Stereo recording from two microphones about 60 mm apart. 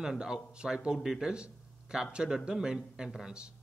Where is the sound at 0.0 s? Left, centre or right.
Centre.